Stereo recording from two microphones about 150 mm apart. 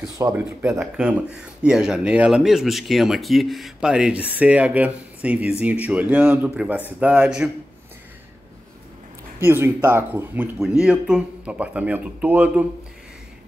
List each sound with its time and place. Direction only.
0.3 s a man's voice: 10° right (ahead or behind)
9.4 s speech: 15° right (ahead or behind)